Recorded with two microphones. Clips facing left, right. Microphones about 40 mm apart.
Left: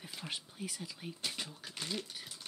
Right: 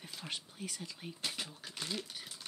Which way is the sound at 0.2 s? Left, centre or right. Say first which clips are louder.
Left 1 dB; centre.